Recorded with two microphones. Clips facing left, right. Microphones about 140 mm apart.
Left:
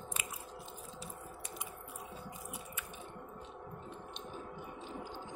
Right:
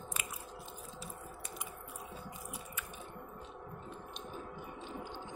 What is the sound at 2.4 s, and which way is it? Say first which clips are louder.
Chewing: even; 20° left (ahead or behind).